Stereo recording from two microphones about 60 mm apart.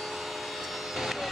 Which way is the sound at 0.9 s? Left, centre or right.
Centre.